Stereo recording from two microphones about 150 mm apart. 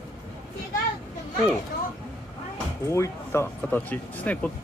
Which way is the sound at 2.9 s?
20° left (ahead or behind).